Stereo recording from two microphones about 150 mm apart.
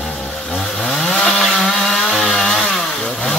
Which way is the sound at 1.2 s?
5° left (ahead or behind).